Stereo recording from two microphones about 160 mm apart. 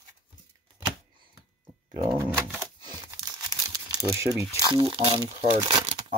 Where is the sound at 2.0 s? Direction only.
20° right (ahead or behind).